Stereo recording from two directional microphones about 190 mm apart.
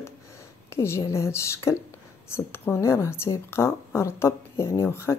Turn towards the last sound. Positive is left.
turn(degrees=15)  # may be behind; listen again after turning